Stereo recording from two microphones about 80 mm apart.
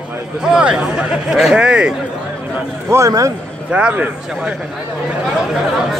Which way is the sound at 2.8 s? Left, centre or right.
Right.